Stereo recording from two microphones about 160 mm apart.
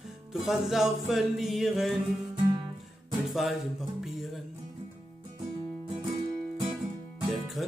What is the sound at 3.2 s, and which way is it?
Speech, centre (ahead or behind).